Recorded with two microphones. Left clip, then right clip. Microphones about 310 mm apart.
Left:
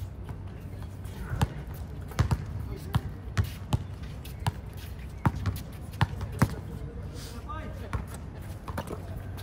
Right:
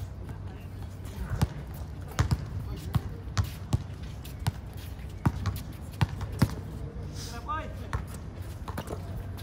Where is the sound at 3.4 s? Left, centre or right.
Centre.